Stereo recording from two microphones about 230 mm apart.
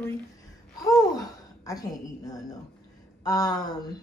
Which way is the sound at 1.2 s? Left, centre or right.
Centre.